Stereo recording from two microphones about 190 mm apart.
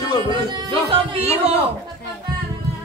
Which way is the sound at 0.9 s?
30° right (ahead or behind).